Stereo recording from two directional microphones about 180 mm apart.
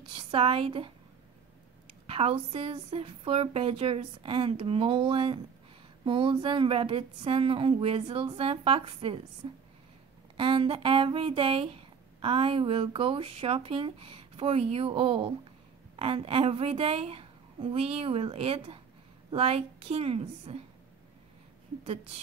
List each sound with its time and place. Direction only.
0.1 s a woman's voice: 30° right (ahead or behind)
2.0 s a woman's voice: 30° right (ahead or behind)
21.8 s a woman's voice: 35° right (ahead or behind)